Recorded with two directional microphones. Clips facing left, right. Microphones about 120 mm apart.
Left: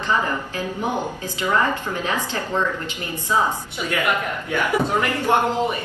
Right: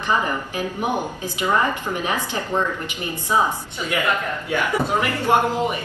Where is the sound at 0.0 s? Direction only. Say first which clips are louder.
Even; 15° right (ahead or behind).